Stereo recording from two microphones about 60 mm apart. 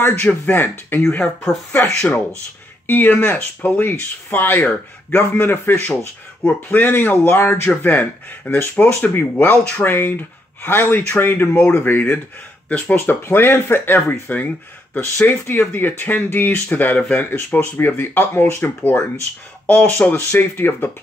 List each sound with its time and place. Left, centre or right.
0.0 s a man's voice: left
2.0 s speech: centre
2.9 s a man's voice: left
3.3 s a man's voice: left
19.6 s speech: left
20.2 s a man's voice: left